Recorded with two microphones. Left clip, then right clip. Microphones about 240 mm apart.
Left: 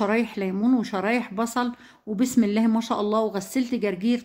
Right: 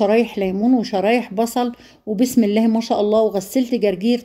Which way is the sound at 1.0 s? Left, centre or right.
Left.